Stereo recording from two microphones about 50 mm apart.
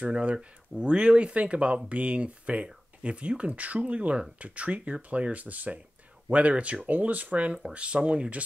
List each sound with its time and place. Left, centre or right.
0.0 s speech: right